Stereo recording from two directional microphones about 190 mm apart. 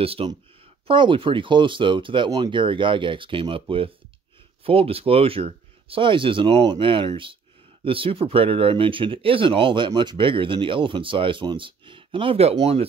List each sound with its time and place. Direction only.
0.0 s speech: 30° right (ahead or behind)